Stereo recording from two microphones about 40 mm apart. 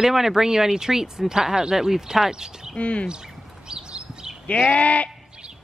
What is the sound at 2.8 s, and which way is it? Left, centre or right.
Sheep, left.